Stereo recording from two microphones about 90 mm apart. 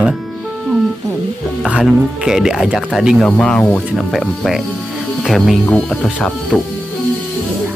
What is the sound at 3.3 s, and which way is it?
Speech, 10° left (ahead or behind).